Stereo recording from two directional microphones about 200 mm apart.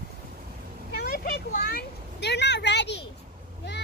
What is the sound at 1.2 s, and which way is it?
Vehicle, 45° left (ahead or behind).